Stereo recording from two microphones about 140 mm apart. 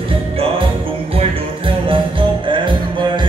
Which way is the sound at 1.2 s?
40° right (ahead or behind).